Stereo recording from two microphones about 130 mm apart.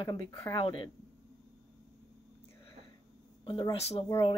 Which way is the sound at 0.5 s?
40° left (ahead or behind).